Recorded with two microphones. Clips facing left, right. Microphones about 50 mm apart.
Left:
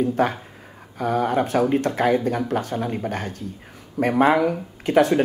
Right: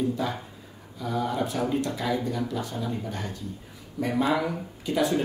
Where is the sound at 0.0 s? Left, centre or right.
Left.